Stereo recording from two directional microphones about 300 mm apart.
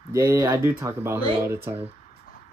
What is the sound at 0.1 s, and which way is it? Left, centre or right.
Music, centre.